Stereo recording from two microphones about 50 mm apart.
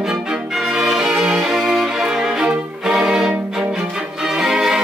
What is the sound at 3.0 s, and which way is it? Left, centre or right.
Music, centre.